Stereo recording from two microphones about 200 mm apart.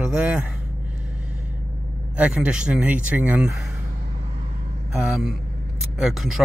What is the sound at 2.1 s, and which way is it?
Speech, 5° right (ahead or behind).